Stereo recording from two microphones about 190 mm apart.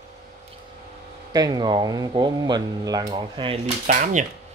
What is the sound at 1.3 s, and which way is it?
Speech, 20° right (ahead or behind).